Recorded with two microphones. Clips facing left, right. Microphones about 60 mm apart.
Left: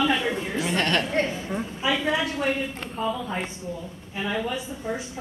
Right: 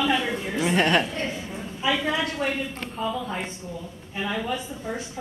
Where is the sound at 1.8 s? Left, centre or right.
Centre.